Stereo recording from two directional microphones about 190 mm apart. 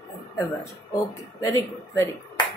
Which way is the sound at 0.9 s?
15° left (ahead or behind).